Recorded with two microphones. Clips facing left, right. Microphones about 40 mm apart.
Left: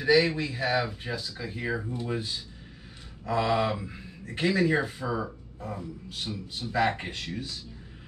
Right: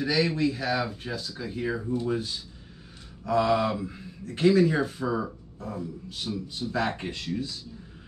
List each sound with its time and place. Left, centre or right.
0.0 s speech: centre
3.3 s mantra: left
4.5 s speech: centre
6.3 s speech: centre
7.1 s mantra: left